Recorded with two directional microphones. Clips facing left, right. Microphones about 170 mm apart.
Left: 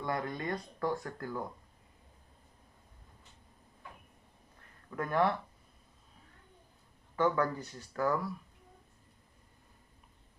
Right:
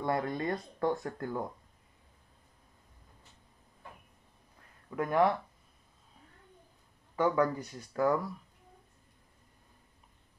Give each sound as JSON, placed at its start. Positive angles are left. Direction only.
{"t": 0.0, "sound": "speech", "side_deg": -25}
{"t": 4.9, "sound": "speech", "side_deg": -15}
{"t": 7.2, "sound": "speech", "side_deg": -20}